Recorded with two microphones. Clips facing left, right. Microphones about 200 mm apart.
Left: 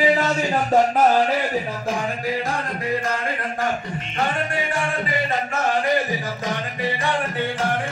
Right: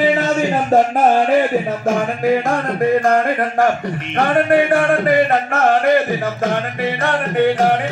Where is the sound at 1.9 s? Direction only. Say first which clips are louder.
Right 10 dB; 55° right (ahead or behind).